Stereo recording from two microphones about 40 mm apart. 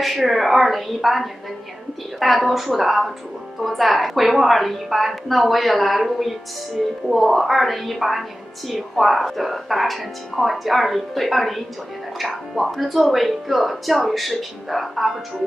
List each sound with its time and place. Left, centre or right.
0.0 s a woman's voice: centre